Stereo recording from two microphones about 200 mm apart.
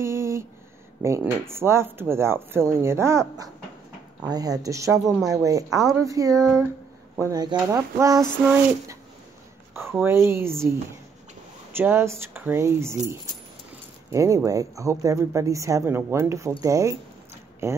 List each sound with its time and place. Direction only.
0.0 s a sound: 15° right (ahead or behind)
1.0 s speech: 15° right (ahead or behind)
10.0 s speech: 10° right (ahead or behind)
11.7 s speech: 10° right (ahead or behind)